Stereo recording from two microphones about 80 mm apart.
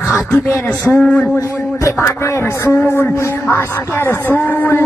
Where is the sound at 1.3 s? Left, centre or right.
Left.